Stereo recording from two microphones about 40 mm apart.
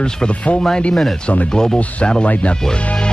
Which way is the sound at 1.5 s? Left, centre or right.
Centre.